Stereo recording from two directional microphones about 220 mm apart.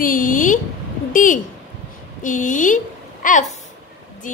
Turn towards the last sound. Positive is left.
turn(degrees=35)  # may be behind; listen again after turning